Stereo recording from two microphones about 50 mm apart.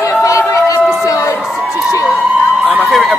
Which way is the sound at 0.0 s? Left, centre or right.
Left.